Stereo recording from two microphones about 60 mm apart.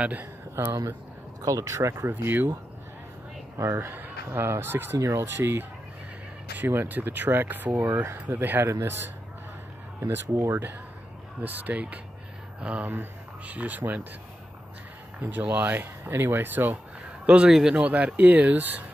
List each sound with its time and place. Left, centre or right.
0.2 s speech: right
1.4 s speech: right
2.0 s speech: right
3.5 s speech: right
4.3 s speech: right
4.9 s speech: right
7.7 s speech: right
8.4 s speech: right
9.9 s speech: right
11.4 s speech: right
12.9 s speech: right
15.2 s speech: right
17.3 s a man's voice: centre
17.7 s speech: right